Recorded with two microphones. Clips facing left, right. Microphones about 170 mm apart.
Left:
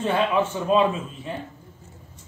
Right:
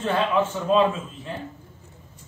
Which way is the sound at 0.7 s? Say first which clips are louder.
Even; 15° left (ahead or behind).